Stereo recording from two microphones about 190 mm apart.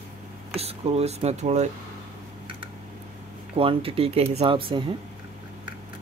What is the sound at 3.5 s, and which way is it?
Speech, 30° right (ahead or behind).